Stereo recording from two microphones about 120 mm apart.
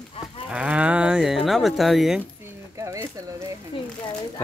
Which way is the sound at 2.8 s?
25° right (ahead or behind).